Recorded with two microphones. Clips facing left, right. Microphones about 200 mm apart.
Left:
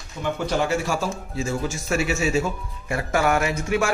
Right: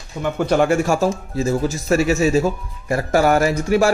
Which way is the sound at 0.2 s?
55° right (ahead or behind).